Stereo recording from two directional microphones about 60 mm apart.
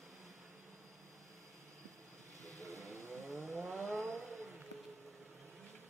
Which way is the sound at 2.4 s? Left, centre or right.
Right.